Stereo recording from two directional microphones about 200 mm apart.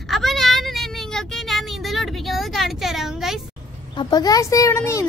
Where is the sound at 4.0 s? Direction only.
20° left (ahead or behind).